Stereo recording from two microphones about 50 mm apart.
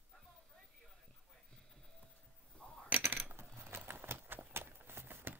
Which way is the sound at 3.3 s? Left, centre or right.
Right.